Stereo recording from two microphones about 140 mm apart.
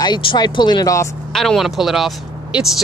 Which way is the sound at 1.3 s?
Centre (ahead or behind).